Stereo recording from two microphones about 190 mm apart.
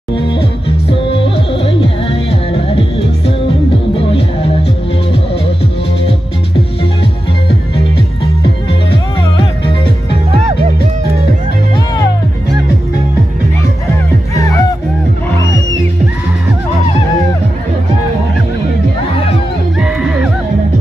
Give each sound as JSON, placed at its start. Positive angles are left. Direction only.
{"t": 0.3, "sound": "music", "side_deg": 30}
{"t": 14.3, "sound": "music", "side_deg": 15}
{"t": 19.8, "sound": "music", "side_deg": -5}